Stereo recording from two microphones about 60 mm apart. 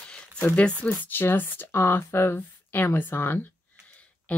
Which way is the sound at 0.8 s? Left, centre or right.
Left.